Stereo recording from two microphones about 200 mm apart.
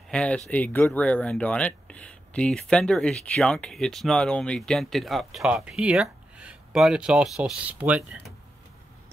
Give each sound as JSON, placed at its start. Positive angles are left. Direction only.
{"t": 0.1, "sound": "speech", "side_deg": 5}